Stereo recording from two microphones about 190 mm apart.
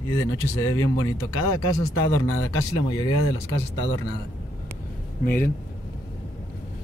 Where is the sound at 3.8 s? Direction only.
70° left (ahead or behind).